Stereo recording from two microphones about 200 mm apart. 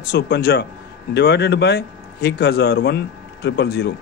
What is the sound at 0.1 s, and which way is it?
A man's voice, 55° left (ahead or behind).